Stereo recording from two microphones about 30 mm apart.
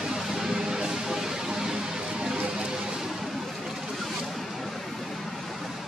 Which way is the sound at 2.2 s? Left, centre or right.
Right.